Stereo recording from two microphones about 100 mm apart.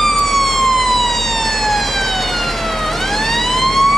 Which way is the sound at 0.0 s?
5° left (ahead or behind).